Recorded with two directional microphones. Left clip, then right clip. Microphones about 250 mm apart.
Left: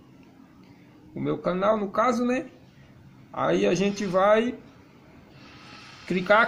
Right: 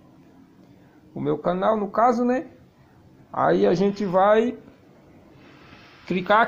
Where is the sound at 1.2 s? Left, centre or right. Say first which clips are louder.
Right 3 dB; centre.